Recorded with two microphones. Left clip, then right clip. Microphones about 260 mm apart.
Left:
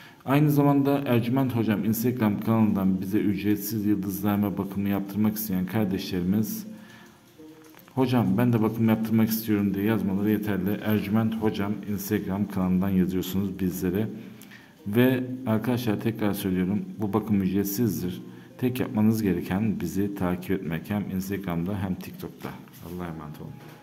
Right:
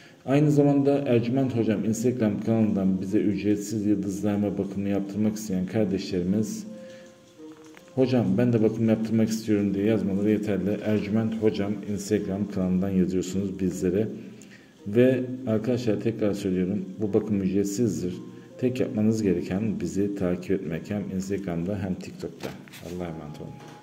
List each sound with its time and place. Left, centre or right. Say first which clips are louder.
0.3 s a man's voice: right 1 dB; centre
8.0 s a man's voice: right 1 dB; centre